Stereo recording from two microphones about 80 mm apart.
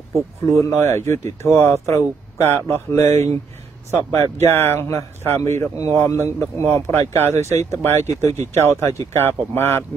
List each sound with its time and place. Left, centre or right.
0.6 s speech: left